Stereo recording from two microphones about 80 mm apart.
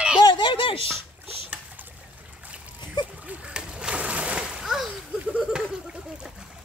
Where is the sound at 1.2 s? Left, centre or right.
Right.